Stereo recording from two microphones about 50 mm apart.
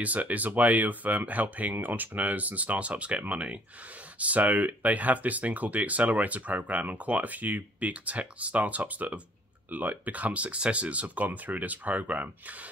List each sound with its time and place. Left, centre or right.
0.0 s speech: right